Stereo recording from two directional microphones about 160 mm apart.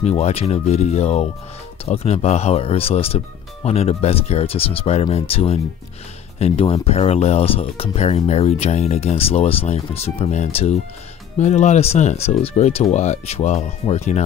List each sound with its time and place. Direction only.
0.0 s speech: 40° left (ahead or behind)